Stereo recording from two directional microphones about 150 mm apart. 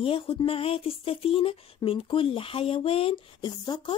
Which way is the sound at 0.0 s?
35° left (ahead or behind).